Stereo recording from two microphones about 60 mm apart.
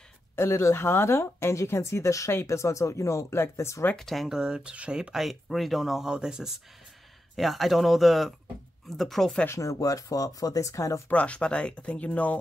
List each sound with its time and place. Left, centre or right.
0.4 s speech: left
3.9 s speech: centre
4.3 s speech: centre
5.1 s speech: centre
7.3 s speech: centre
9.5 s speech: left
11.1 s speech: left